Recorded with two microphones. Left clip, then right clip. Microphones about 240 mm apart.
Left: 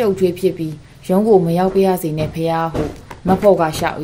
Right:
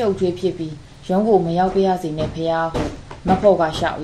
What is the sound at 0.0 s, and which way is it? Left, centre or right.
Speech, left.